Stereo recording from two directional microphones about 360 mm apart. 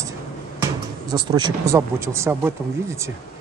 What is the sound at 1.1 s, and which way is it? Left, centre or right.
Speech, centre.